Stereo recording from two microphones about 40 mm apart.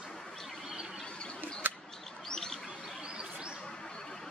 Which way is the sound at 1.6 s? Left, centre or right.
Right.